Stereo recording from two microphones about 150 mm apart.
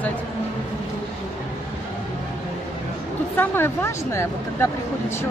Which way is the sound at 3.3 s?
15° left (ahead or behind).